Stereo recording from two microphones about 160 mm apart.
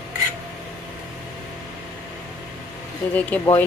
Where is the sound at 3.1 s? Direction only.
10° left (ahead or behind).